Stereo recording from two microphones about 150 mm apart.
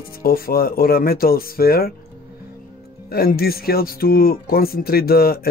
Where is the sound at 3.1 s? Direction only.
90° left.